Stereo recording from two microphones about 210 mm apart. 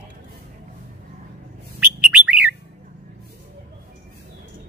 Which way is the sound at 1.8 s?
5° right (ahead or behind).